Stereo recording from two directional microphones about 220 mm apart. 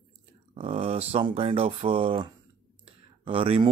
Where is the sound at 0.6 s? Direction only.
25° right (ahead or behind).